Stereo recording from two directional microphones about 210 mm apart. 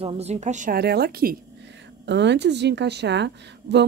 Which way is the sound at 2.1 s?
55° right (ahead or behind).